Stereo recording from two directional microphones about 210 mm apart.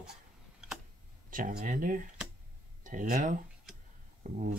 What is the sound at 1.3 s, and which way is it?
Speech, 40° right (ahead or behind).